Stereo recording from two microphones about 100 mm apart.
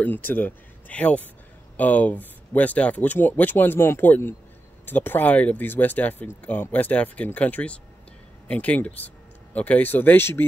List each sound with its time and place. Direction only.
0.0 s speech: 20° left (ahead or behind)